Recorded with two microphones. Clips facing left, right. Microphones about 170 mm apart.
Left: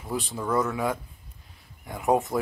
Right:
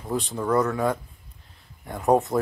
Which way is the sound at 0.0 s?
Centre (ahead or behind).